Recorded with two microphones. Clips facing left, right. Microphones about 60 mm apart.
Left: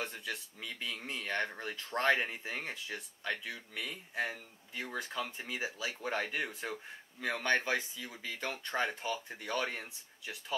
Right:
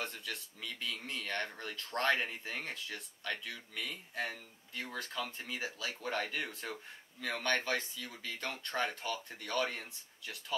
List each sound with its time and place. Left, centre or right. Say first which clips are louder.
0.0 s speech: left 2 dB; centre